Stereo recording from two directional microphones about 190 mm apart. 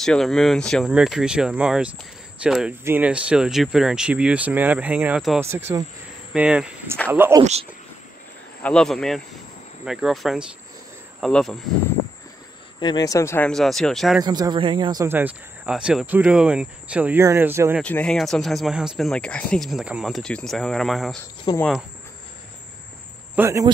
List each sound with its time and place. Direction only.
0.0 s speech: 5° left (ahead or behind)
8.6 s speech: 5° left (ahead or behind)
12.8 s speech: 20° left (ahead or behind)
13.5 s speech: centre (ahead or behind)
14.2 s speech: 20° right (ahead or behind)
17.8 s speech: 5° left (ahead or behind)
23.3 s speech: 15° right (ahead or behind)